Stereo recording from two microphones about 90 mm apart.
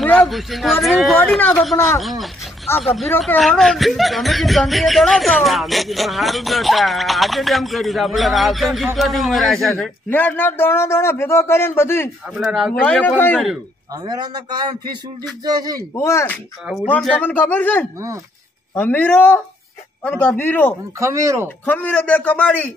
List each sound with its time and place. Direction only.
0.0 s a sound: 5° left (ahead or behind)
1.6 s speech: centre (ahead or behind)
3.3 s a sound: centre (ahead or behind)
10.0 s a man's voice: 20° left (ahead or behind)
12.4 s a sound: 5° right (ahead or behind)
13.0 s a man's voice: 20° left (ahead or behind)
14.0 s speech: 50° right (ahead or behind)
16.0 s speech: 30° left (ahead or behind)
17.1 s a man's voice: 20° left (ahead or behind)
21.0 s speech: 35° right (ahead or behind)
21.6 s a man's voice: 20° left (ahead or behind)